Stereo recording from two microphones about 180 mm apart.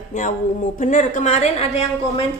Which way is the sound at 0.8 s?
45° left (ahead or behind).